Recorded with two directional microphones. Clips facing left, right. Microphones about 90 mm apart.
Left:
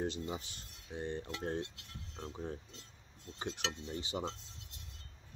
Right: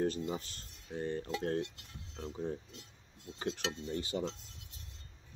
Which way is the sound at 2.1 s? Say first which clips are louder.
Right 3 dB; centre (ahead or behind).